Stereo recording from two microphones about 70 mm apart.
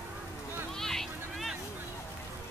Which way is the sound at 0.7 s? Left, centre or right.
Centre.